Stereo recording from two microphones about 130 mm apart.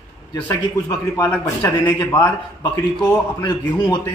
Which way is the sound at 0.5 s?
25° left (ahead or behind).